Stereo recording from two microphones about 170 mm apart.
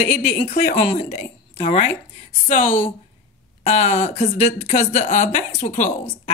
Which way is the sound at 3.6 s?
40° left (ahead or behind).